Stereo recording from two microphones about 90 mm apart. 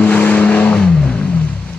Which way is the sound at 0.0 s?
15° left (ahead or behind).